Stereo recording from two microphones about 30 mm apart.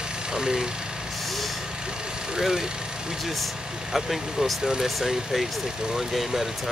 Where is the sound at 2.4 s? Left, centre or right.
Centre.